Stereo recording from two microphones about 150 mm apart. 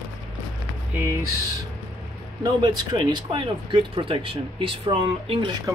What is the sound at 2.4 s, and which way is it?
Speech, 25° right (ahead or behind).